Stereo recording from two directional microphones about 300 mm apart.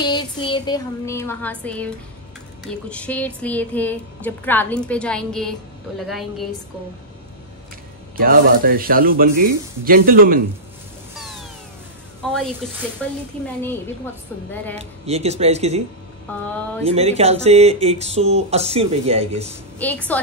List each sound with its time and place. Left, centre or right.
0.0 s music: centre
2.7 s a woman's voice: centre
8.2 s speech: right
12.2 s speech: centre
14.5 s a woman's voice: centre
14.8 s speech: right
16.8 s speech: right
19.8 s a woman's voice: centre